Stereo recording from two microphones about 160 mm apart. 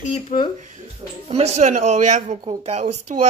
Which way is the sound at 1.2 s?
40° right (ahead or behind).